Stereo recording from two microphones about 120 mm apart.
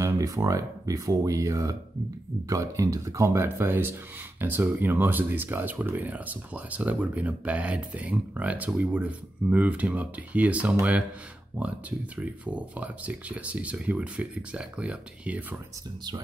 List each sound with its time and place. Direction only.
0.0 s speech: 25° right (ahead or behind); by 11.1 s 10° right (ahead or behind)
12.2 s speech: 10° right (ahead or behind)